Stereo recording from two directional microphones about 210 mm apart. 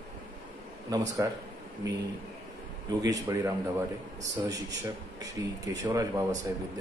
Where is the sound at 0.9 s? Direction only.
15° right (ahead or behind).